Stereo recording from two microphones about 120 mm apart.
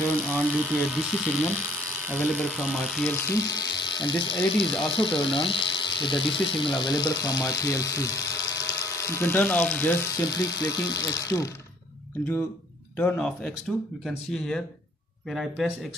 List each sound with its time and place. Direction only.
0.4 s speech: 15° right (ahead or behind)
1.6 s electric toothbrush: 20° right (ahead or behind)
2.4 s speech: centre (ahead or behind)
3.3 s speech: 30° left (ahead or behind)
10.1 s speech: 35° left (ahead or behind)
12.9 s speech: 15° left (ahead or behind)